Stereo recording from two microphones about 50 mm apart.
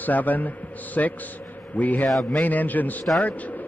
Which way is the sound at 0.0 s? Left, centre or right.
Left.